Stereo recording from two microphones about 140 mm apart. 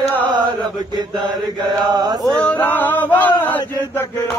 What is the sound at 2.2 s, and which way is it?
Male singing, 5° left (ahead or behind).